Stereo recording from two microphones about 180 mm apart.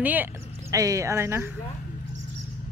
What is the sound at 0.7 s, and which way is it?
Speech, 20° right (ahead or behind).